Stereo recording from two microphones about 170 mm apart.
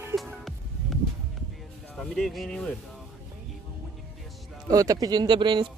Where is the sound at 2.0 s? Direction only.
Centre (ahead or behind).